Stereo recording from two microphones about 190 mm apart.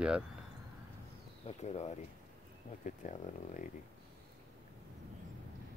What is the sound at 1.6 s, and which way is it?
Speech, 35° left (ahead or behind).